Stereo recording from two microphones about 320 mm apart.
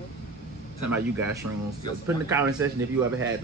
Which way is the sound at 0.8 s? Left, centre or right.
Centre.